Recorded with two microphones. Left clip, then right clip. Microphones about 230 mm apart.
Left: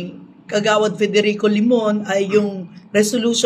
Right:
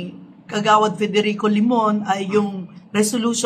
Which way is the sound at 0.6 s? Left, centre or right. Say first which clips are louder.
Even; centre.